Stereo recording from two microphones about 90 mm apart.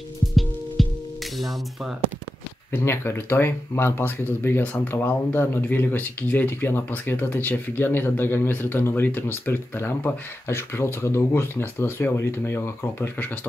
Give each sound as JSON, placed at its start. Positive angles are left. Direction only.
{"t": 0.8, "sound": "music", "side_deg": 0}
{"t": 2.7, "sound": "speech", "side_deg": 25}